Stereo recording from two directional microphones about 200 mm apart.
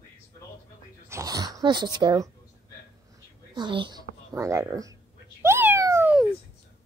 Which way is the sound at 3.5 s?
25° right (ahead or behind).